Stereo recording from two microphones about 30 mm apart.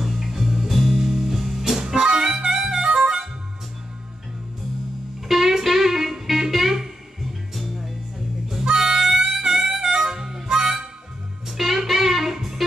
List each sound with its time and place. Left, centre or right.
0.0 s music: centre
2.0 s harmonica: right
5.3 s music: centre
7.2 s music: centre
8.5 s harmonica: centre
11.4 s music: centre